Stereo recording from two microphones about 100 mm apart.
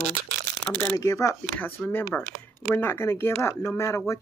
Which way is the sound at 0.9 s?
35° left (ahead or behind).